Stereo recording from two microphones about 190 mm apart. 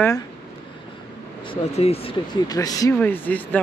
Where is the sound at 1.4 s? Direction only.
30° left (ahead or behind).